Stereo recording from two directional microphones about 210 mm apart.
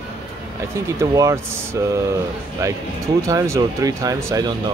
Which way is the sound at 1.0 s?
15° right (ahead or behind).